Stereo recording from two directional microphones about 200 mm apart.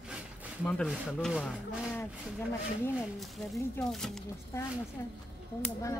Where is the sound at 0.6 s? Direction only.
5° left (ahead or behind).